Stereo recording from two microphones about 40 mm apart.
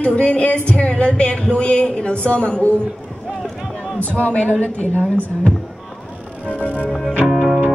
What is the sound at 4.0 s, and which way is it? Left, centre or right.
Speech, left.